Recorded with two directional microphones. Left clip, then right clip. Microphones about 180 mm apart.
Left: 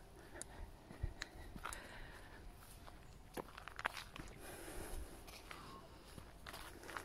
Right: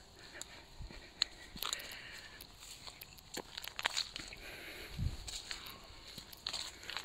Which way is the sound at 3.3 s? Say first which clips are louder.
Right 5 dB; 60° right (ahead or behind).